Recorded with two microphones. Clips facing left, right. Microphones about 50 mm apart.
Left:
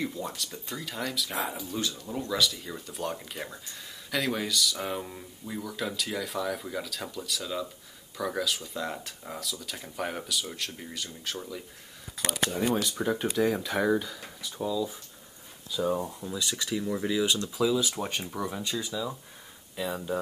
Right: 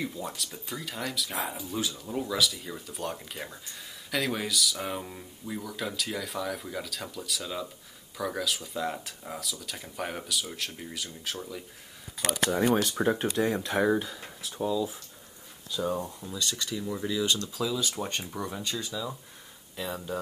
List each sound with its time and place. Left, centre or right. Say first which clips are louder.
0.0 s speech: left 1 dB; centre
12.7 s speech: right 3 dB; right
13.0 s speech: even; centre
15.7 s speech: left 2 dB; centre